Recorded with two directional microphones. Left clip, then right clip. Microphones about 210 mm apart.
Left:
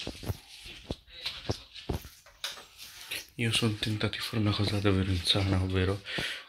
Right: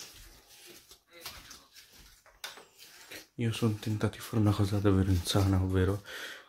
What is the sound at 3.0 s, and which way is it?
Speech, 15° right (ahead or behind).